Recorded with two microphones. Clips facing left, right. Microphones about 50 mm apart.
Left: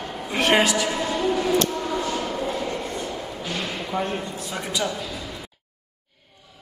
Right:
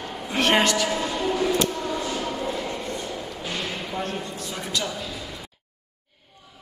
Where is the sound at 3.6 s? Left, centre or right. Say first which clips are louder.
Left 1 dB; left.